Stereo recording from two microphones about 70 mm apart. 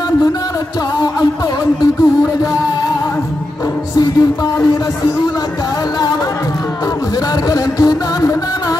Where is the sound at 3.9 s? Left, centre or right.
Left.